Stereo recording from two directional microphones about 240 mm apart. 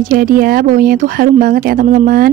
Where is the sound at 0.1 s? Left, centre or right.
Right.